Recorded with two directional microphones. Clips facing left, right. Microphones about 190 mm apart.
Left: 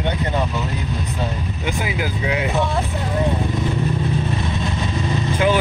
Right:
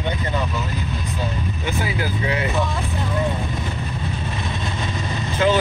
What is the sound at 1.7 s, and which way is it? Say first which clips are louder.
Vehicle: right 1 dB; 15° left (ahead or behind).